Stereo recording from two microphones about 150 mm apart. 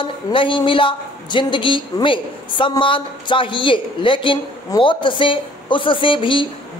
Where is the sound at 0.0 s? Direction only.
35° left (ahead or behind).